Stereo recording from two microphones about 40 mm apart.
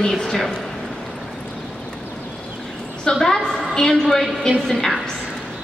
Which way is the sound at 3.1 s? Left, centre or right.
Centre.